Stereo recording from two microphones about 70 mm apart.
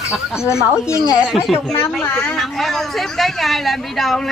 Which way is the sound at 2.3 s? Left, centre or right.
Centre.